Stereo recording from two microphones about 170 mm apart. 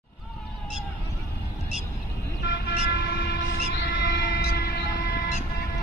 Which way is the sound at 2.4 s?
85° left.